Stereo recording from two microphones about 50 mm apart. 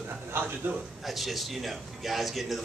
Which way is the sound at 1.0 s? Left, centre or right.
Centre.